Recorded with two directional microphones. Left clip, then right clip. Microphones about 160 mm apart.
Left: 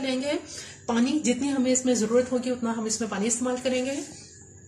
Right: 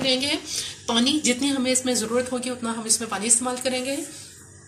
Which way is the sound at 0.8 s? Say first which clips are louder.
Right 3 dB; 40° left (ahead or behind).